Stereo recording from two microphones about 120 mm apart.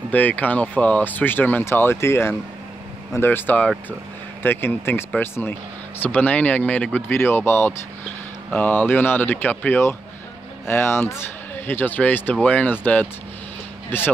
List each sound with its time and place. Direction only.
0.1 s speech: 15° left (ahead or behind)